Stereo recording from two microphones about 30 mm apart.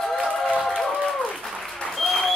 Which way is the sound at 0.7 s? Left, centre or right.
Centre.